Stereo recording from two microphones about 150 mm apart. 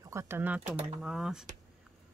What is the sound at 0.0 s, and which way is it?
Speech, 20° right (ahead or behind).